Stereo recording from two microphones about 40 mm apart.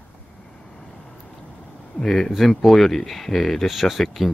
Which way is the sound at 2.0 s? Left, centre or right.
Centre.